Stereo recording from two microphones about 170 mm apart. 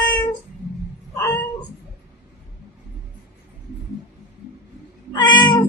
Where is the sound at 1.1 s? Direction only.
20° left (ahead or behind).